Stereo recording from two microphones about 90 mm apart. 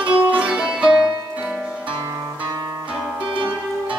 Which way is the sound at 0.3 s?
10° right (ahead or behind).